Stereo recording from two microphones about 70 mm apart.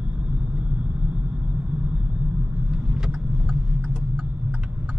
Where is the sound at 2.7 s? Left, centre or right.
Centre.